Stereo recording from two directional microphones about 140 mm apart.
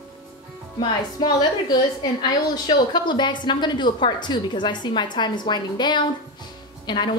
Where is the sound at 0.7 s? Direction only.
30° left (ahead or behind).